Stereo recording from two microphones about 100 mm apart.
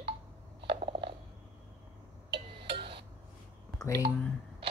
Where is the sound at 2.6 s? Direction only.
60° right (ahead or behind).